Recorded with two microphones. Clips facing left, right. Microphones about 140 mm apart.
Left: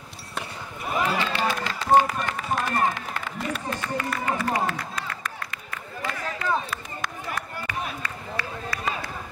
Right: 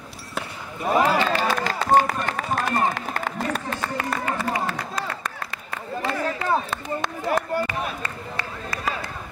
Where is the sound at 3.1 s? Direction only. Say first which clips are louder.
Right 4 dB; 45° right (ahead or behind).